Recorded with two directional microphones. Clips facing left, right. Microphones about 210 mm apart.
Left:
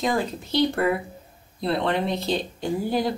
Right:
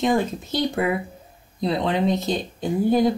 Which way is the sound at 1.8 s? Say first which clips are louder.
Right 3 dB; 15° right (ahead or behind).